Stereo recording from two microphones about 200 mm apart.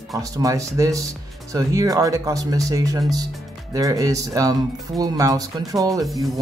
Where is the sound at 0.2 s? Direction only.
15° right (ahead or behind).